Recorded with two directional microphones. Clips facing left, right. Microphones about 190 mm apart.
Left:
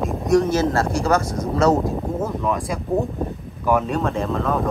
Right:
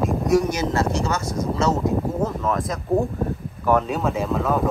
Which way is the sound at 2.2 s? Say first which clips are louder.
Even; 10° left (ahead or behind).